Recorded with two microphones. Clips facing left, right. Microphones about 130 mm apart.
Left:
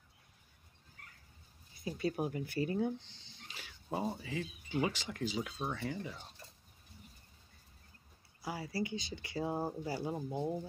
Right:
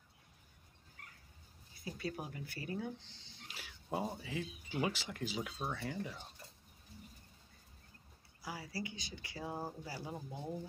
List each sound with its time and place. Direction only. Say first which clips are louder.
2.0 s speech: left 8 dB; 25° left (ahead or behind)
3.4 s speech: left 2 dB; 5° right (ahead or behind)
8.4 s speech: left 6 dB; 25° left (ahead or behind)